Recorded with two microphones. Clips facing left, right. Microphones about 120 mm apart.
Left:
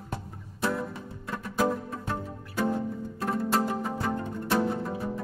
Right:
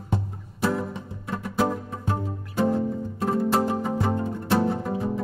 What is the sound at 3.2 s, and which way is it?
Music, 25° right (ahead or behind).